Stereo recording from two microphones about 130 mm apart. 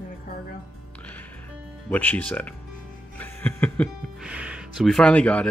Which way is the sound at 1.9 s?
15° left (ahead or behind).